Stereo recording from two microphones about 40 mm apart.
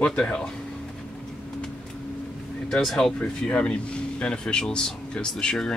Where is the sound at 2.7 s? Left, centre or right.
Centre.